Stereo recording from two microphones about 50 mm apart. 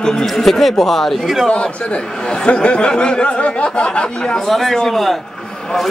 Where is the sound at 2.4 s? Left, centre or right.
Left.